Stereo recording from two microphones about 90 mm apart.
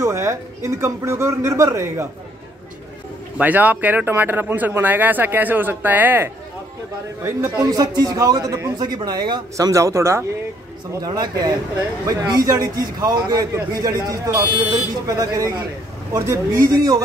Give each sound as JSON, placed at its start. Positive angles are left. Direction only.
{"t": 0.0, "sound": "speech", "side_deg": -35}
{"t": 3.3, "sound": "speech", "side_deg": -15}
{"t": 7.5, "sound": "a man's voice", "side_deg": -45}
{"t": 9.6, "sound": "speech", "side_deg": -35}
{"t": 11.0, "sound": "a man's voice", "side_deg": -50}